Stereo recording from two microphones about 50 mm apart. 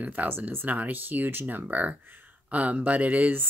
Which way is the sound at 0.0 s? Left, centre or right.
Right.